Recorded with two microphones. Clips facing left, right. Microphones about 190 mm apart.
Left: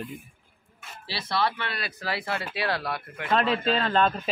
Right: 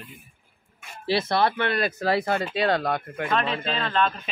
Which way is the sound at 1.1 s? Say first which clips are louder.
Right 6 dB; 50° right (ahead or behind).